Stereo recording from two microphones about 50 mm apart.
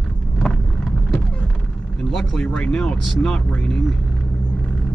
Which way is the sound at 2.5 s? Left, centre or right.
Centre.